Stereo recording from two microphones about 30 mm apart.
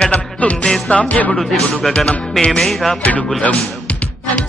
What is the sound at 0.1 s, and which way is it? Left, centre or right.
Music, left.